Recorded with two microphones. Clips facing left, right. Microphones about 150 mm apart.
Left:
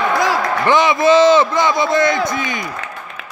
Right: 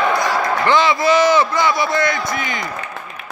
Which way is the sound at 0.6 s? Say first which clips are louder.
Left 3 dB; 20° left (ahead or behind).